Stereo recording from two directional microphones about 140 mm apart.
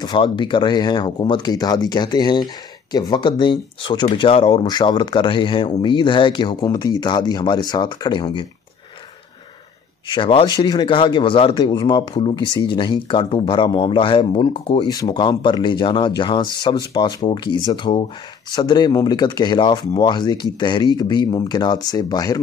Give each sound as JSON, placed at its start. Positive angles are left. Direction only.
{"t": 0.0, "sound": "speech", "side_deg": 35}
{"t": 10.0, "sound": "speech", "side_deg": 35}